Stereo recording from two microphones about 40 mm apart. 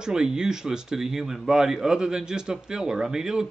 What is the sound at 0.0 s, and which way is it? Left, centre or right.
Speech, centre.